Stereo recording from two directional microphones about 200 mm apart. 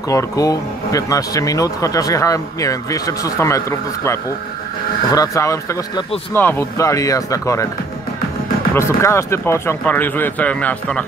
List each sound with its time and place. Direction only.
0.1 s speech: 15° left (ahead or behind)
8.7 s speech: 15° left (ahead or behind)